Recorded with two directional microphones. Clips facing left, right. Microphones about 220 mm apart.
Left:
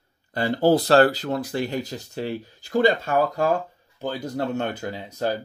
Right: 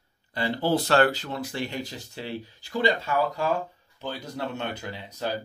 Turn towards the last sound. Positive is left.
turn(degrees=45)  # may be behind; listen again after turning